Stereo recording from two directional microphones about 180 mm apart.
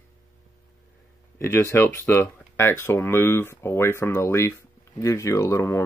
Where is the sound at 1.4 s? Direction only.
15° left (ahead or behind).